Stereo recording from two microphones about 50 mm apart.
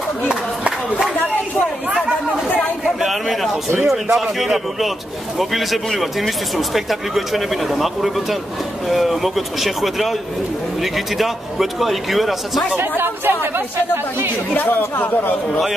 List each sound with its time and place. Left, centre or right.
0.3 s a sound: right
2.0 s chatter: centre
2.8 s a sound: centre
3.8 s speech: centre
12.7 s speech: right
14.8 s a man's voice: left